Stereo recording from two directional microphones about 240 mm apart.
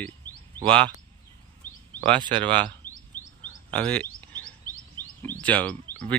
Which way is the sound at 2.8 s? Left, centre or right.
Centre.